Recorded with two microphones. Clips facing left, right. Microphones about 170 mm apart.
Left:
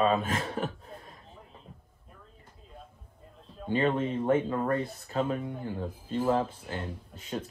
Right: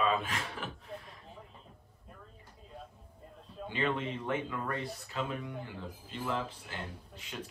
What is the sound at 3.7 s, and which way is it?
Speech, 45° left (ahead or behind).